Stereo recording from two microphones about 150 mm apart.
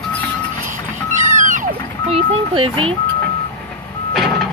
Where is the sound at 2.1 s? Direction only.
40° right (ahead or behind).